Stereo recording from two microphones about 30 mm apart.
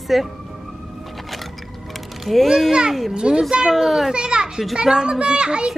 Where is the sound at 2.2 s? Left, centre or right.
Centre.